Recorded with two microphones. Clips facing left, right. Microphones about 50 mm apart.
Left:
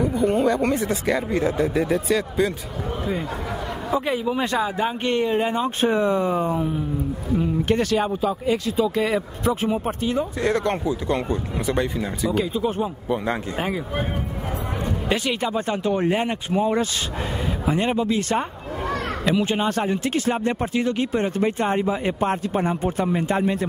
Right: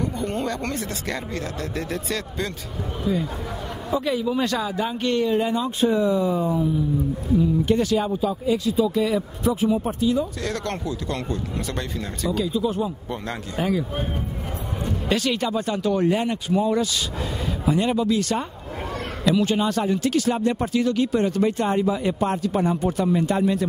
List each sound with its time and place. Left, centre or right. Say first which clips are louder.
0.0 s speech: left 6 dB; centre
3.1 s speech: right 4 dB; left
5.9 s speech: even; left
10.4 s speech: left 6 dB; left
12.4 s speech: right 1 dB; left
13.1 s speech: left 6 dB; centre
13.6 s speech: right 2 dB; left
15.0 s speech: right 1 dB; centre